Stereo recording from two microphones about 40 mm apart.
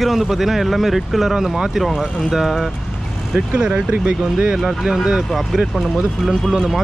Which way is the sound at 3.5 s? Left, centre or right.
Centre.